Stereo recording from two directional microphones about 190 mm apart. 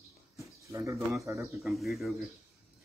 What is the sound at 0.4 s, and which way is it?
Speech, 15° right (ahead or behind).